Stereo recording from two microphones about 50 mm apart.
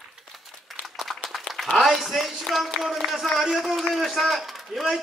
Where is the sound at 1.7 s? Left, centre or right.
Centre.